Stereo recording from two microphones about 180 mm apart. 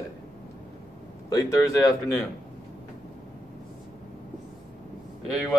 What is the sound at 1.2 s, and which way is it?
Speech, 20° left (ahead or behind).